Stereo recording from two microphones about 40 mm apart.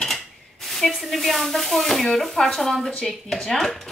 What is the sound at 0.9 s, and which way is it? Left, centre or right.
Speech, centre.